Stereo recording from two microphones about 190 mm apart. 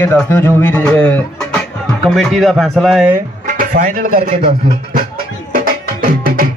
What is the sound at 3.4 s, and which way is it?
Speech, 45° right (ahead or behind).